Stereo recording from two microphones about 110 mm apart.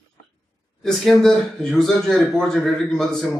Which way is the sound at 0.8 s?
Centre (ahead or behind).